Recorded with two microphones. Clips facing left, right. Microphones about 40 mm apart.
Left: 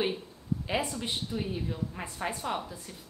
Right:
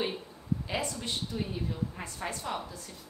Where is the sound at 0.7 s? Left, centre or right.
Centre.